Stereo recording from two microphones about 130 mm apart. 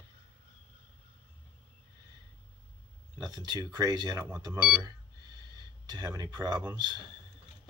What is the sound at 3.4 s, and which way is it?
Speech, 35° right (ahead or behind).